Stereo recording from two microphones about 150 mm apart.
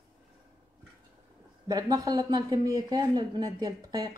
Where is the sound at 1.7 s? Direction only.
25° right (ahead or behind).